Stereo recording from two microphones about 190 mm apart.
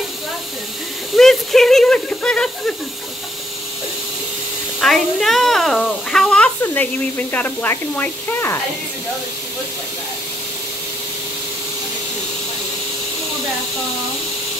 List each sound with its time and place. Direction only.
1.1 s speech: centre (ahead or behind)
4.7 s a child's voice: centre (ahead or behind)